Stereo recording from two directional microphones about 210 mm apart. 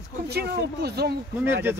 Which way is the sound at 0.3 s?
50° right (ahead or behind).